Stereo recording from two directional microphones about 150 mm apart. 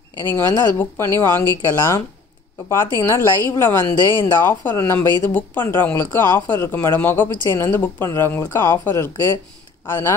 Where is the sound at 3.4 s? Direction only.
15° left (ahead or behind).